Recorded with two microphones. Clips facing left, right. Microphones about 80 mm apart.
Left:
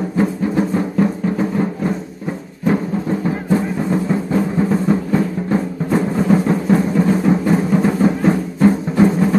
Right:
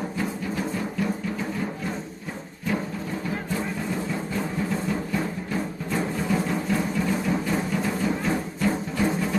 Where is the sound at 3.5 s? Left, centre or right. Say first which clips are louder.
Left 11 dB; left.